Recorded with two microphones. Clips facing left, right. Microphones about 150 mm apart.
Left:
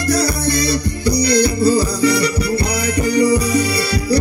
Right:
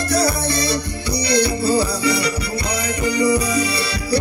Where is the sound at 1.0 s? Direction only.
40° left (ahead or behind).